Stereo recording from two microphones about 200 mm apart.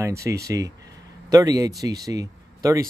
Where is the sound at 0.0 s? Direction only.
15° right (ahead or behind).